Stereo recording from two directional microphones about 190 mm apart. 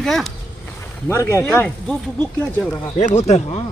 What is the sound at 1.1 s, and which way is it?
Speech, 15° left (ahead or behind).